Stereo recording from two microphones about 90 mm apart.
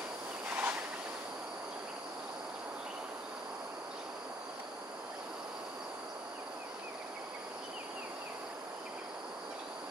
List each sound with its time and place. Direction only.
0.5 s train: 20° right (ahead or behind)